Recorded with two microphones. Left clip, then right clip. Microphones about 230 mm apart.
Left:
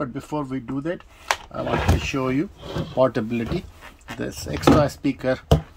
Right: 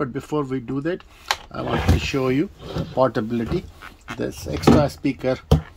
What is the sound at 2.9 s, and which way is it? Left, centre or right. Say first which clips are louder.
Speech: even; centre.